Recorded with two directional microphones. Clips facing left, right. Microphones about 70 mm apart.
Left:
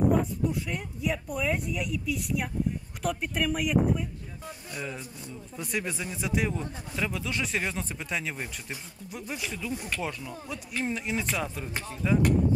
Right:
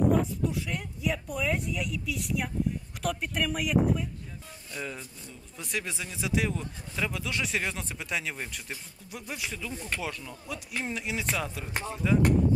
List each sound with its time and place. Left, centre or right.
0.2 s speech: centre
9.8 s speech: centre